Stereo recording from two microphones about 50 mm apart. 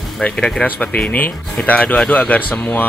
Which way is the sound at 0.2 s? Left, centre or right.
Left.